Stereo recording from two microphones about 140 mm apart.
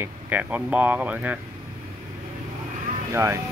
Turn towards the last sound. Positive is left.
turn(degrees=-20)  # may be behind; listen again after turning